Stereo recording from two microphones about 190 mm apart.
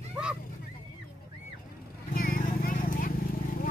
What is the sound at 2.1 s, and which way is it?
Horse, 45° left (ahead or behind).